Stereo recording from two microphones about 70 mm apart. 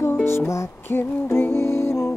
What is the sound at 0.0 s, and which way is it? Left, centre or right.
Music, left.